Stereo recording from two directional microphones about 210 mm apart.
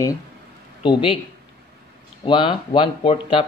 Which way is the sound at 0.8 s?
25° left (ahead or behind).